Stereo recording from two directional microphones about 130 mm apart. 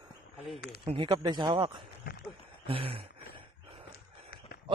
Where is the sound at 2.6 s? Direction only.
45° right (ahead or behind).